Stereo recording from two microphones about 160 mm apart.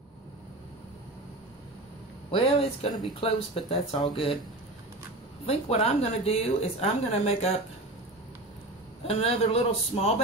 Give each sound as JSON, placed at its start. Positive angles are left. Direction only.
{"t": 2.3, "sound": "a woman's voice", "side_deg": 35}
{"t": 5.5, "sound": "a woman's voice", "side_deg": 40}
{"t": 9.0, "sound": "a woman's voice", "side_deg": 40}